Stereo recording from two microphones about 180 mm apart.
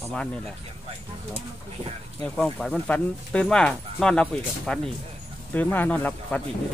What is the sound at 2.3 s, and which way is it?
Speech, 5° left (ahead or behind).